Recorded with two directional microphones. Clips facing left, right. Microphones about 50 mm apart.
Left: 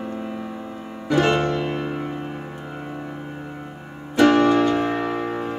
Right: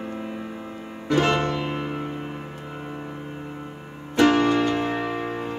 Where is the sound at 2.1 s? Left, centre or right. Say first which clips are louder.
Left 2 dB; centre.